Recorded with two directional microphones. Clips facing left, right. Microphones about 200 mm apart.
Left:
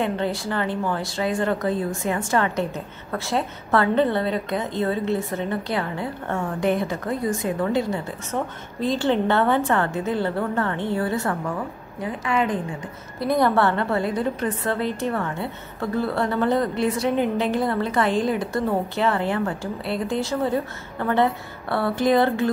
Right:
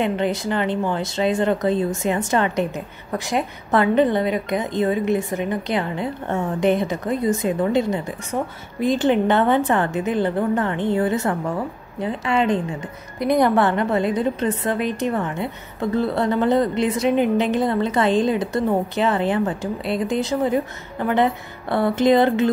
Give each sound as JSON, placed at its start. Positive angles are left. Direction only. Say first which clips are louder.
{"t": 0.0, "sound": "a woman's voice", "louder": "right 3 dB", "side_deg": -20}
{"t": 13.2, "sound": "a woman's voice", "louder": "right 2 dB", "side_deg": -15}